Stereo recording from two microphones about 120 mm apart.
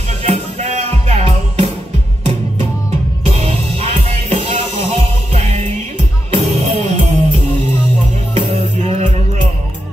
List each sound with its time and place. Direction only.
0.2 s music: 65° right (ahead or behind)
3.3 s music: 60° right (ahead or behind)